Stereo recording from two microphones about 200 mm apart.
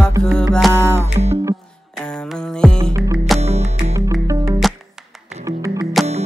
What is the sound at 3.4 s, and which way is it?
Music, 30° right (ahead or behind).